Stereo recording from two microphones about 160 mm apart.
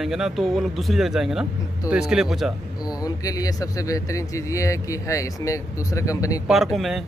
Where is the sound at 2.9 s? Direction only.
25° left (ahead or behind).